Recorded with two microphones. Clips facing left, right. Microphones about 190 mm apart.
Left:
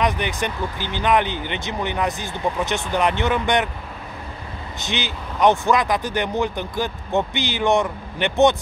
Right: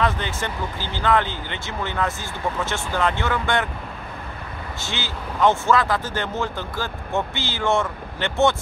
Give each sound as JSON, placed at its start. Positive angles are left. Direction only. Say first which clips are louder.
{"t": 0.0, "sound": "speech", "louder": "left 2 dB", "side_deg": 15}
{"t": 4.7, "sound": "speech", "louder": "left 5 dB", "side_deg": 20}